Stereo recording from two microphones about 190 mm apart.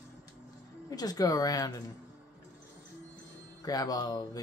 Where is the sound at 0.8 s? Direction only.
20° left (ahead or behind).